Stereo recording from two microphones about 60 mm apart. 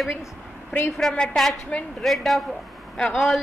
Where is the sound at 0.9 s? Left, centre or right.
Centre.